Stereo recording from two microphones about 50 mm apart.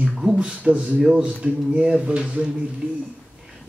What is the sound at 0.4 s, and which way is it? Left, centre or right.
Speech, centre.